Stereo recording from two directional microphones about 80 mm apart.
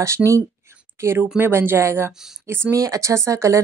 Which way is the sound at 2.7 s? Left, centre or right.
Right.